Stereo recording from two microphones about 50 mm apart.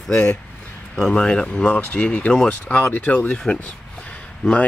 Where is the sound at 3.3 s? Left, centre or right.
Left.